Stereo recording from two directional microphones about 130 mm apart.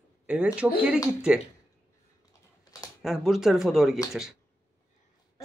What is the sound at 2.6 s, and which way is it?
Typing, 25° left (ahead or behind).